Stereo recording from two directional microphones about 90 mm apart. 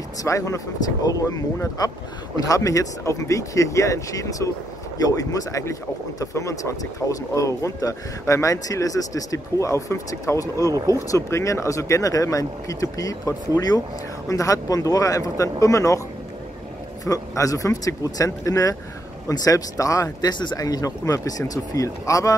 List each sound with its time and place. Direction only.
0.2 s speech: 35° left (ahead or behind)
17.1 s a man's voice: 30° left (ahead or behind); by 20.6 s 55° left (ahead or behind)
20.6 s speech: 40° left (ahead or behind)